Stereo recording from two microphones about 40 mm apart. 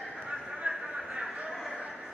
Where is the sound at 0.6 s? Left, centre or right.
Right.